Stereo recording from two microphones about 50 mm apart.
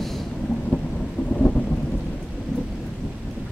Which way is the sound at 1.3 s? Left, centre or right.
Left.